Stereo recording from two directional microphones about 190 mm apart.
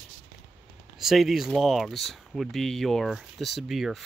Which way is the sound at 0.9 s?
Centre (ahead or behind).